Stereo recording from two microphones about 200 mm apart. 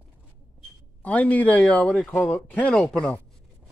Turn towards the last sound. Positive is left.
turn(degrees=5)  # may be behind; listen again after turning